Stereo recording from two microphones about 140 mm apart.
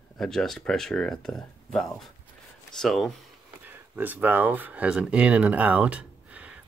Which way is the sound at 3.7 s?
15° right (ahead or behind).